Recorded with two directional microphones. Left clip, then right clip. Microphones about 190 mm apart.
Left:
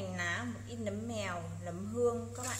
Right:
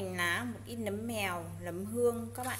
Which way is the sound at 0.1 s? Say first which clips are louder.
Right 5 dB; 40° right (ahead or behind).